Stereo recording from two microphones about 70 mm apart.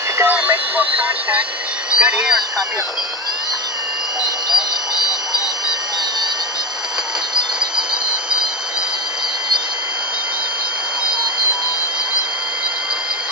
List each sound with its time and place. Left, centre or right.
0.2 s radio: centre
2.0 s speech: centre